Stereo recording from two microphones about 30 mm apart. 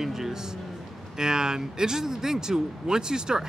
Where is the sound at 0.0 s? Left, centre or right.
Centre.